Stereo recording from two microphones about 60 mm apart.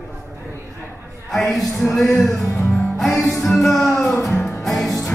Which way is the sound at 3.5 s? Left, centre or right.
Centre.